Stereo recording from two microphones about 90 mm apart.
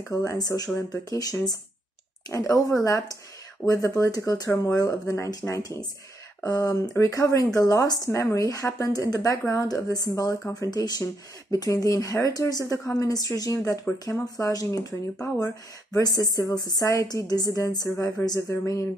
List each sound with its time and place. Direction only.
0.1 s speech: 40° left (ahead or behind)